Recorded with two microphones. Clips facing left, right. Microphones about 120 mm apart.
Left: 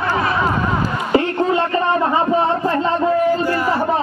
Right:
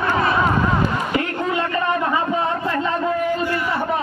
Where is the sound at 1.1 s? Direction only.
30° left (ahead or behind).